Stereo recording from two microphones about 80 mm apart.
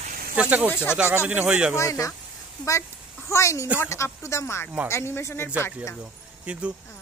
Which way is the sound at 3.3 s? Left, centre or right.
Left.